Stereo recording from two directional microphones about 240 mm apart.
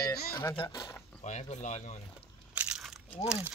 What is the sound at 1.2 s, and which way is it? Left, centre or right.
Speech, left.